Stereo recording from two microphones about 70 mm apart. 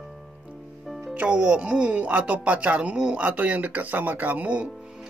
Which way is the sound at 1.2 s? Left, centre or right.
Centre.